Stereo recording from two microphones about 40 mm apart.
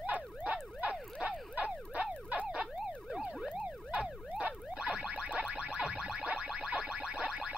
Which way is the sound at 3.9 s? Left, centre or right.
Right.